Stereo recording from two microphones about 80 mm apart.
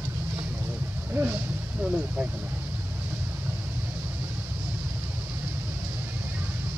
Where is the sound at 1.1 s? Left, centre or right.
Right.